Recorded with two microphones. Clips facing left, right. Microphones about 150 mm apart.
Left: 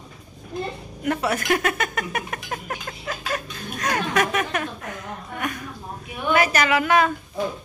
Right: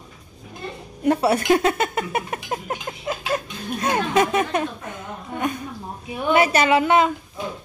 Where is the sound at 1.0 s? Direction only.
30° right (ahead or behind).